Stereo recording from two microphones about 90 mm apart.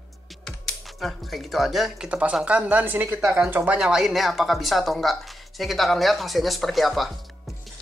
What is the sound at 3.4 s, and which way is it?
Speech, 20° right (ahead or behind).